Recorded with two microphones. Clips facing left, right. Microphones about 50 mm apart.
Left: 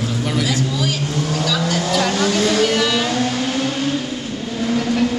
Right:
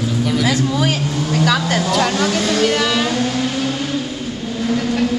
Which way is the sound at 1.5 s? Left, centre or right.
Right.